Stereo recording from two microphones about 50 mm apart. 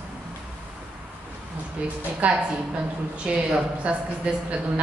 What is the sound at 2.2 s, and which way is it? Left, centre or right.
A woman's voice, right.